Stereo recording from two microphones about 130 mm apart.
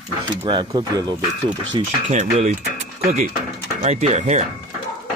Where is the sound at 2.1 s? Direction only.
70° right (ahead or behind).